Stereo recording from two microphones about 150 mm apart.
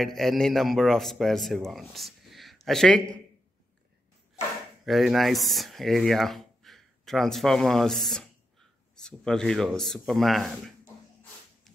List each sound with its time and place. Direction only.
0.0 s a man's voice: centre (ahead or behind)
4.4 s a sound: 50° left (ahead or behind)
4.8 s speech: centre (ahead or behind)